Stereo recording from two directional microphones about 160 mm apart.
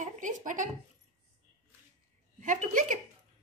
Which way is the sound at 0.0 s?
55° right (ahead or behind).